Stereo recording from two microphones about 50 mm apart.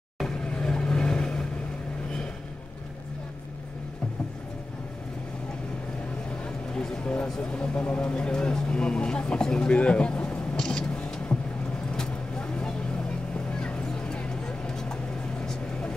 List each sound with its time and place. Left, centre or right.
0.5 s vehicle: left
6.4 s a sound: centre
7.2 s speech: centre
10.6 s vehicle: centre